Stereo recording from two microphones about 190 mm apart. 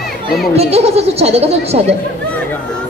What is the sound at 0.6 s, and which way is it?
Speech, 35° right (ahead or behind).